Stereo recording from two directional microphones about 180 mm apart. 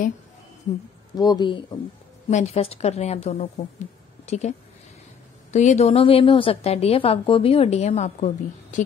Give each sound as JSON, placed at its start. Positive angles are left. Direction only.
{"t": 1.1, "sound": "speech", "side_deg": 20}
{"t": 2.2, "sound": "a woman's voice", "side_deg": 35}